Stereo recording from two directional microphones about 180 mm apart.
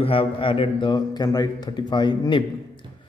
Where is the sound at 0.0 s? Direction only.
30° left (ahead or behind).